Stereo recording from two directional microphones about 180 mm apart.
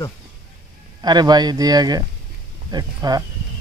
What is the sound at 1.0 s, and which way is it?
Speech, 25° right (ahead or behind).